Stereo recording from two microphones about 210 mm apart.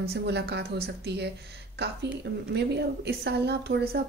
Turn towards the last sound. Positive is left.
turn(degrees=-50)  # may be behind; listen again after turning